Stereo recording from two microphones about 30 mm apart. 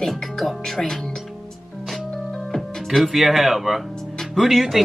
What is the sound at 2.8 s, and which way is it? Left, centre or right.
Speech, centre.